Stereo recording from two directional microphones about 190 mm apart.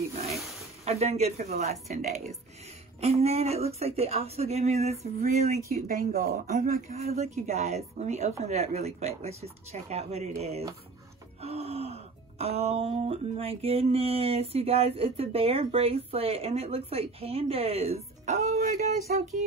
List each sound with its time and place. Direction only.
0.8 s gasp: 35° right (ahead or behind)
5.7 s speech: 50° right (ahead or behind)
7.2 s gasp: 35° right (ahead or behind)